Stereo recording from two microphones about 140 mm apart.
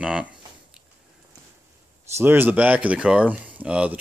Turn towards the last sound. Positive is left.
turn(degrees=-10)  # may be behind; listen again after turning